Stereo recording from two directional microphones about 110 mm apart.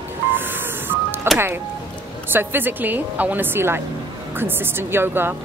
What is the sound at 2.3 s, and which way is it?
Speech, 20° right (ahead or behind).